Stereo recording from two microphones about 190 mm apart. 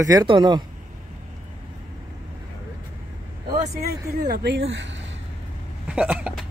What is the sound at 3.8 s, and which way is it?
Speech, 55° right (ahead or behind).